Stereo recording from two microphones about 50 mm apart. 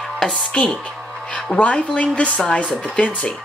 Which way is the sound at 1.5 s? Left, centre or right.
Left.